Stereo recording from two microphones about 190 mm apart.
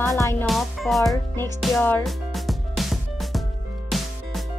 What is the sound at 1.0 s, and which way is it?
Speech, 15° left (ahead or behind).